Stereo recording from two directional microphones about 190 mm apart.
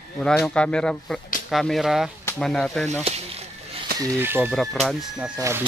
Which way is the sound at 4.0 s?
10° right (ahead or behind).